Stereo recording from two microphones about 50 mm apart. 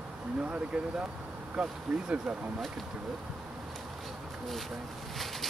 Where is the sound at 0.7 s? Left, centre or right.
Right.